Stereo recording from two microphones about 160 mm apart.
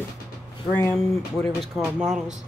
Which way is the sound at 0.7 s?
15° left (ahead or behind).